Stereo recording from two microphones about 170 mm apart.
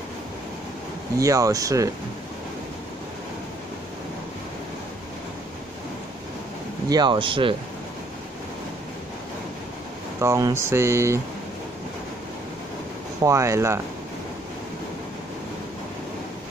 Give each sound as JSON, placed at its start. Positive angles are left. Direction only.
{"t": 1.1, "sound": "speech", "side_deg": -20}
{"t": 6.9, "sound": "speech", "side_deg": -25}
{"t": 10.2, "sound": "speech", "side_deg": -15}
{"t": 13.2, "sound": "speech", "side_deg": -15}